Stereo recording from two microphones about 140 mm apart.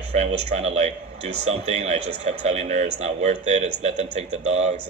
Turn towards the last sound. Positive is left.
turn(degrees=-55)  # may be behind; listen again after turning